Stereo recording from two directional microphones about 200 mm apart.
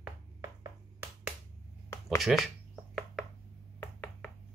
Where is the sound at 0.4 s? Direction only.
15° right (ahead or behind).